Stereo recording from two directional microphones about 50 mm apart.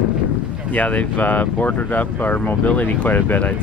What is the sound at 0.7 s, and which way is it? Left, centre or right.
Speech, left.